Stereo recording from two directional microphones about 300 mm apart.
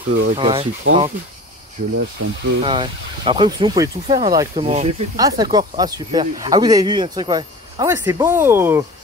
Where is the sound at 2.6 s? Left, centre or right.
Centre.